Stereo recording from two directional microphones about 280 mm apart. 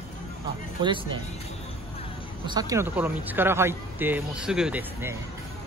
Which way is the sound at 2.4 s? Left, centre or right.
Centre.